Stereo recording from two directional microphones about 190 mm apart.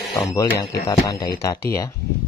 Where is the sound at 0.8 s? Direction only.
15° left (ahead or behind).